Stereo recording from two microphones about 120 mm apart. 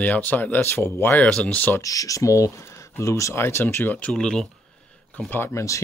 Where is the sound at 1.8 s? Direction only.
30° left (ahead or behind); by 4.5 s 5° left (ahead or behind).